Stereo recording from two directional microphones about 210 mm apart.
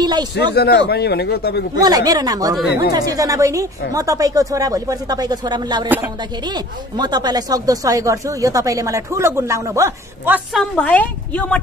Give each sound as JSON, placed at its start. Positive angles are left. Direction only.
{"t": 0.0, "sound": "speech", "side_deg": -20}
{"t": 0.4, "sound": "speech", "side_deg": 50}
{"t": 1.8, "sound": "speech", "side_deg": -15}
{"t": 10.6, "sound": "speech", "side_deg": 5}